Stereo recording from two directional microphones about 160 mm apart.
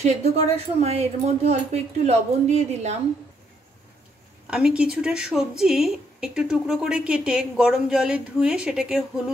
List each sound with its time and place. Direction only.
0.0 s a woman's voice: 45° right (ahead or behind)
4.5 s a woman's voice: 5° right (ahead or behind)